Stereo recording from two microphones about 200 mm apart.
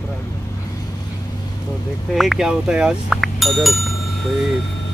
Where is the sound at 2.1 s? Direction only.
Centre (ahead or behind).